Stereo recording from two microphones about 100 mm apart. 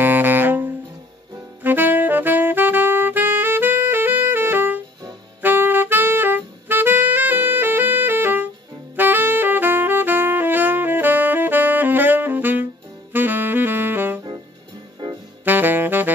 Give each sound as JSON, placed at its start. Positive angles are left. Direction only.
{"t": 0.0, "sound": "saxophone", "side_deg": -20}
{"t": 15.0, "sound": "saxophone", "side_deg": -45}
{"t": 15.4, "sound": "saxophone", "side_deg": -20}